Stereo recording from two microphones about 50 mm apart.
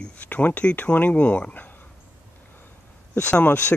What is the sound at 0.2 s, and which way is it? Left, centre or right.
Speech, left.